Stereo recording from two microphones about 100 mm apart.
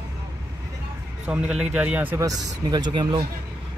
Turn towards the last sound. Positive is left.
turn(degrees=-50)  # may be behind; listen again after turning